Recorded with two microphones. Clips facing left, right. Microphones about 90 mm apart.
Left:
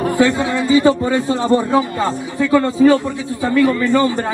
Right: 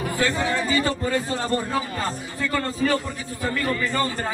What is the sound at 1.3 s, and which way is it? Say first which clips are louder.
Speech: left 9 dB; 25° left (ahead or behind).